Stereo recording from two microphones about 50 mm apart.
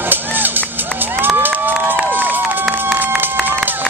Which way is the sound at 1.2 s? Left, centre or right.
Right.